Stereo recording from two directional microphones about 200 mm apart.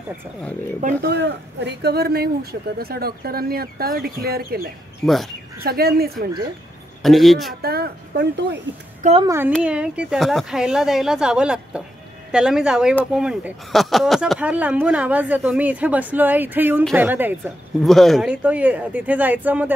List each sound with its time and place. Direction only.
1.0 s speech: 60° right (ahead or behind)
5.0 s speech: centre (ahead or behind)
5.6 s speech: 50° right (ahead or behind)
7.0 s speech: centre (ahead or behind)
7.6 s speech: 50° right (ahead or behind)
9.2 s speech: 15° right (ahead or behind)
17.8 s speech: centre (ahead or behind)